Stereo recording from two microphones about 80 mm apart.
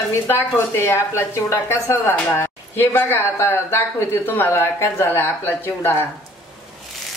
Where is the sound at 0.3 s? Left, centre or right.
Left.